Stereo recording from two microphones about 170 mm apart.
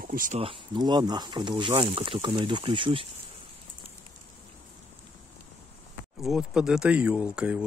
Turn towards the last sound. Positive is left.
turn(degrees=-5)  # may be behind; listen again after turning